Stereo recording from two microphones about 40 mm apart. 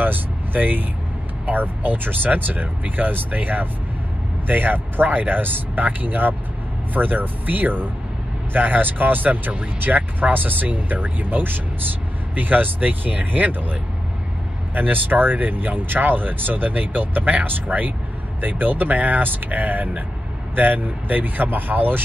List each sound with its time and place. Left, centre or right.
0.0 s speech: right